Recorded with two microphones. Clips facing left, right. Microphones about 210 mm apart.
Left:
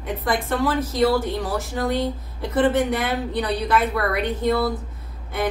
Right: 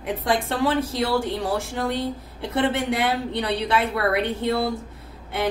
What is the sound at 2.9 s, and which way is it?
A woman's voice, 30° right (ahead or behind).